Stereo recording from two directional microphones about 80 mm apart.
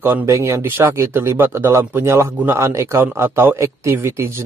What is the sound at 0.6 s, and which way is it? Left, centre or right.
A man's voice, right.